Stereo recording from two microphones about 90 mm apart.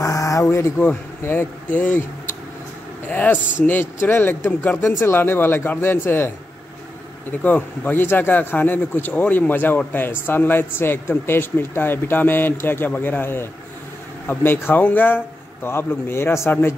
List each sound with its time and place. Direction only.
0.0 s a sound: 40° left (ahead or behind)
0.7 s speech: 20° left (ahead or behind)
3.1 s a man's voice: 20° left (ahead or behind)